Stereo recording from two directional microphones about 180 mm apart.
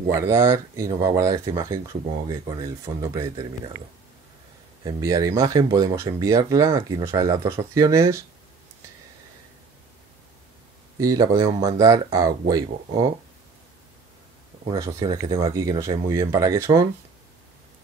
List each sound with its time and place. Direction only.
0.1 s speech: 15° right (ahead or behind)
4.8 s speech: 20° right (ahead or behind)
11.0 s speech: 20° right (ahead or behind)
14.7 s speech: 20° right (ahead or behind)